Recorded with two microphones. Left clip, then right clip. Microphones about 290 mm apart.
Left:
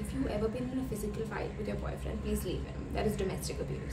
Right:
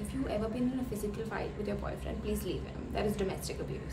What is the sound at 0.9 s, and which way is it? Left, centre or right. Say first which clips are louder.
A woman's voice: even; centre.